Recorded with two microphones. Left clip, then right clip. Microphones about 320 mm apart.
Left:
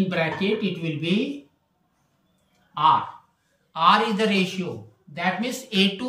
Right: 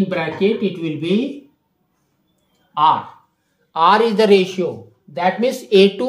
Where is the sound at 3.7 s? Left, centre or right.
Centre.